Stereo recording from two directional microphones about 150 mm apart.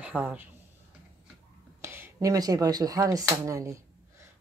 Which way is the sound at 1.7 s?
15° right (ahead or behind).